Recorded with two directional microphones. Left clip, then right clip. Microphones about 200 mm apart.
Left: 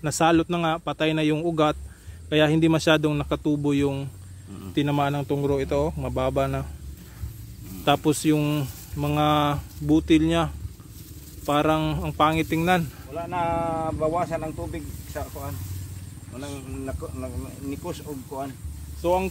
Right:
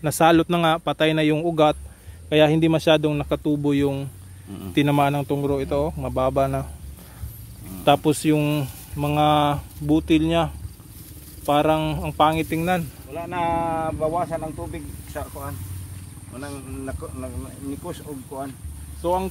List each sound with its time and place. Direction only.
0.0 s speech: 15° right (ahead or behind)
7.8 s speech: 10° right (ahead or behind)
13.1 s speech: 60° right (ahead or behind)
14.1 s speech: 5° right (ahead or behind)